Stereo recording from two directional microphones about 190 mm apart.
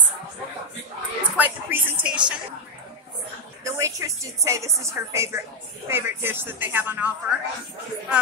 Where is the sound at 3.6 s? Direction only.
15° right (ahead or behind).